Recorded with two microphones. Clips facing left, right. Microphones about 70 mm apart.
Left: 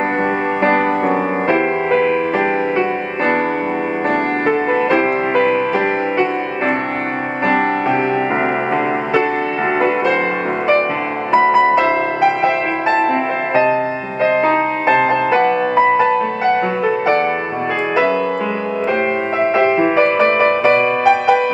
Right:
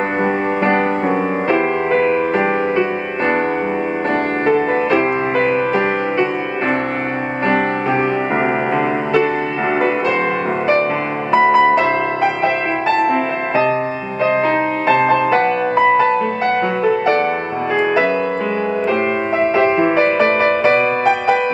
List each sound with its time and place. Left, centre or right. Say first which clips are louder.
1.5 s music: left 1 dB; centre
14.9 s music: right 1 dB; centre
16.8 s music: right 2 dB; centre
19.8 s music: left 1 dB; centre